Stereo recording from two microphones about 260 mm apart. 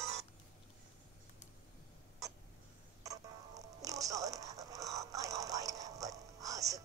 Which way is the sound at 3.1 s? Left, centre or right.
Centre.